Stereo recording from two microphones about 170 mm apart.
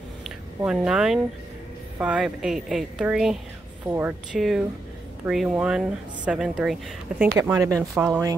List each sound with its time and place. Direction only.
0.7 s speech: 5° right (ahead or behind)
4.4 s speech: centre (ahead or behind)
7.3 s speech: 15° right (ahead or behind)